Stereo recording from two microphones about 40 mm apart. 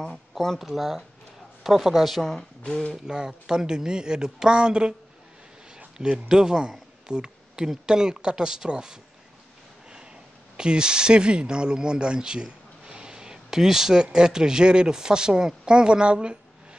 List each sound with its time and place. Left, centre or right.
0.6 s a man's voice: centre
2.6 s speech: left
3.1 s speech: centre
5.9 s speech: centre
10.6 s speech: right